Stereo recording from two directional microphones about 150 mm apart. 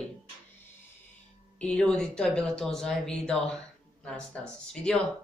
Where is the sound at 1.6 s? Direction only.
5° left (ahead or behind).